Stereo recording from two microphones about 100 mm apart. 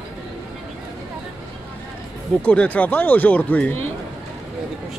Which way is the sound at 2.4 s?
15° left (ahead or behind).